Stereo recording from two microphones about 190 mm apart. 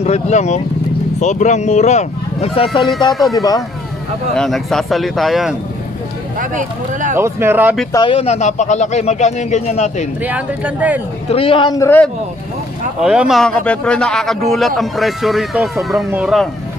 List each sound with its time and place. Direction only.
0.0 s speech: 35° left (ahead or behind)
3.1 s speech: centre (ahead or behind)
3.3 s a man's voice: 20° left (ahead or behind)
4.4 s speech: centre (ahead or behind)
6.5 s speech: 40° right (ahead or behind)
7.2 s speech: 10° right (ahead or behind)
7.9 s speech: 25° left (ahead or behind)
10.2 s speech: 5° right (ahead or behind)
11.2 s a man's voice: 30° left (ahead or behind); by 12.1 s 15° left (ahead or behind)
13.0 s speech: 5° right (ahead or behind)